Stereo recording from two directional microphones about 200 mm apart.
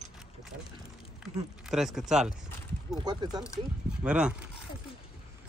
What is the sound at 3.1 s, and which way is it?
Speech, 20° right (ahead or behind).